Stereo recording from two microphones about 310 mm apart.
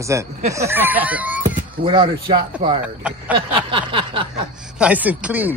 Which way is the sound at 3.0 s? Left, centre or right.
Centre.